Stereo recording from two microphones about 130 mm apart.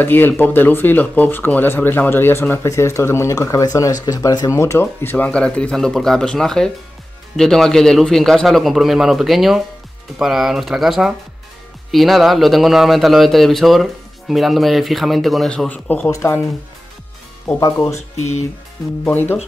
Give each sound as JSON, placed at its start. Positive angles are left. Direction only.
{"t": 0.0, "sound": "speech", "side_deg": 15}
{"t": 17.6, "sound": "speech", "side_deg": 25}
{"t": 19.0, "sound": "speech", "side_deg": 15}